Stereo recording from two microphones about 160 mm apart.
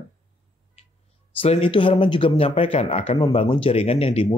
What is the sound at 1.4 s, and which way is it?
Speech, 35° left (ahead or behind).